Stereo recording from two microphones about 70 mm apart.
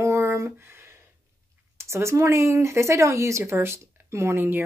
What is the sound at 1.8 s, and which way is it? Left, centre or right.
Speech, right.